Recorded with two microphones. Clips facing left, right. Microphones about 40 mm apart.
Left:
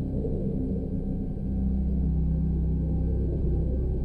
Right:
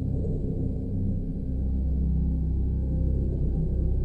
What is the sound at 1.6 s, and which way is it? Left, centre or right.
Gong, centre.